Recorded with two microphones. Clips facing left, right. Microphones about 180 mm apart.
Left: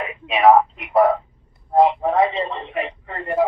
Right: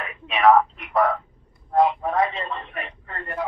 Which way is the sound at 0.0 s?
15° left (ahead or behind).